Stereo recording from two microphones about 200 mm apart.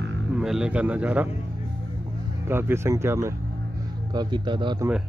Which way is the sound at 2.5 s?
15° right (ahead or behind).